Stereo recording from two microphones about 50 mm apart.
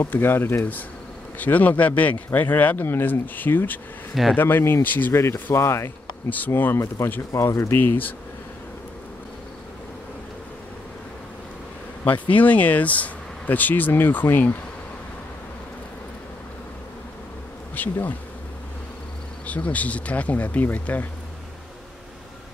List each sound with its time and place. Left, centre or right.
0.1 s speech: left
1.4 s speech: left
5.1 s speech: left
6.5 s speech: left
7.6 s speech: left
12.0 s speech: left
17.7 s bee: left
19.4 s speech: left